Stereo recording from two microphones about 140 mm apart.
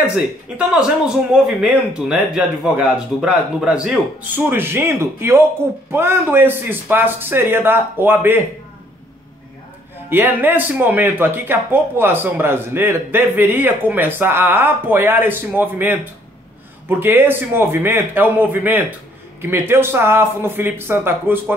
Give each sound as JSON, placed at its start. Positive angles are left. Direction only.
{"t": 0.6, "sound": "speech", "side_deg": -5}
{"t": 10.0, "sound": "speech", "side_deg": -15}
{"t": 17.0, "sound": "speech", "side_deg": -15}